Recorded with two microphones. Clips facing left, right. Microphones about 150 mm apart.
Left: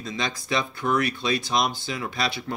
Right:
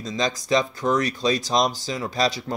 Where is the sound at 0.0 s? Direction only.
40° right (ahead or behind).